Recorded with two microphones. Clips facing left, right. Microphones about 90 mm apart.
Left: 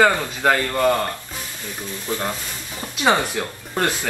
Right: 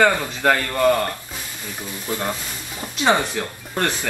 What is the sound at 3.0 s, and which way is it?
Speech, 15° left (ahead or behind).